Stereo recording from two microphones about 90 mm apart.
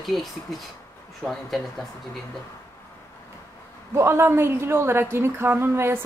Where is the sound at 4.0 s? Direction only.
30° right (ahead or behind).